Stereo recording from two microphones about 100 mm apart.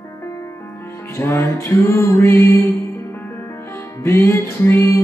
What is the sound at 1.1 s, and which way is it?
Music, 25° left (ahead or behind).